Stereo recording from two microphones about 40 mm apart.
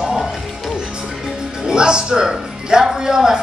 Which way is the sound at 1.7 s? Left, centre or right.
Right.